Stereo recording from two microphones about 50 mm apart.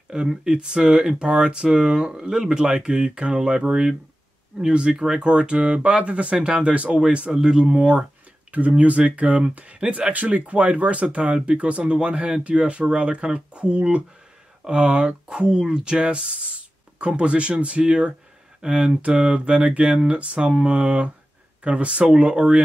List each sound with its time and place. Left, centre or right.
0.1 s speech: centre